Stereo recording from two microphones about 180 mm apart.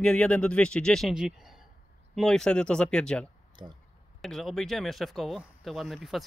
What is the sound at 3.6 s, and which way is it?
Speech, 25° right (ahead or behind).